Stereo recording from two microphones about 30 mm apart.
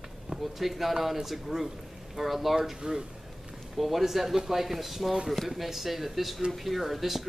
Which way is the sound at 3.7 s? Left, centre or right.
Centre.